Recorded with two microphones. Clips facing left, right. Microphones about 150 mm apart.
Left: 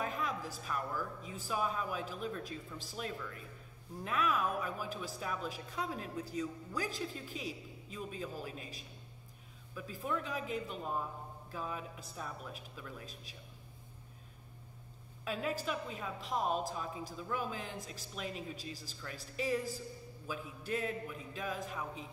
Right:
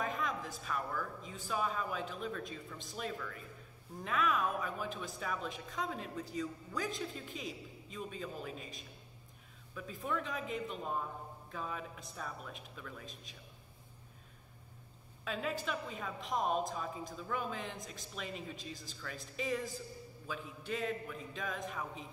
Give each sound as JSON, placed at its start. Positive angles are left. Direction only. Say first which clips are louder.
{"t": 0.0, "sound": "a woman's voice", "louder": "even", "side_deg": 5}
{"t": 15.2, "sound": "a woman's voice", "louder": "left 1 dB", "side_deg": 5}